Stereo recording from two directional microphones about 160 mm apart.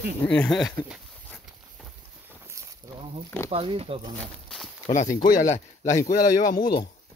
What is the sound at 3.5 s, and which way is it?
Speech, 35° right (ahead or behind).